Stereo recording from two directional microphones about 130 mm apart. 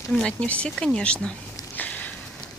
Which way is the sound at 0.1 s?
5° left (ahead or behind).